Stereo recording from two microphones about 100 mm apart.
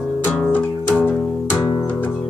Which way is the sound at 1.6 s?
30° left (ahead or behind).